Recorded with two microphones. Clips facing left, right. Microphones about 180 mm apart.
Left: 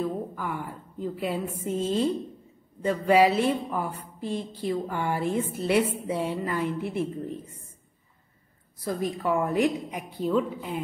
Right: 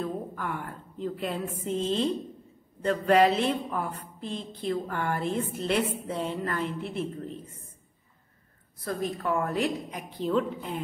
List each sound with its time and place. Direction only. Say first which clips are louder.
0.0 s a woman's voice: left 3 dB; centre (ahead or behind)
8.8 s a woman's voice: left 2 dB; 15° left (ahead or behind)